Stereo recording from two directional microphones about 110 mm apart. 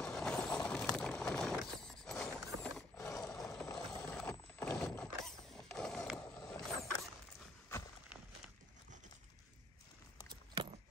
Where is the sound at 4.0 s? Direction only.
10° left (ahead or behind).